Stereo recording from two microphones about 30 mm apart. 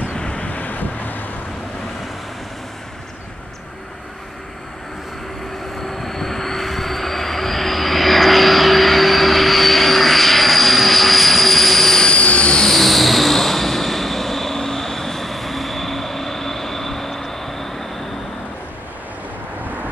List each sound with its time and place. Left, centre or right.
0.1 s vehicle: left
0.4 s vehicle: left
5.8 s vehicle: centre
12.1 s train: left
12.6 s vehicle: centre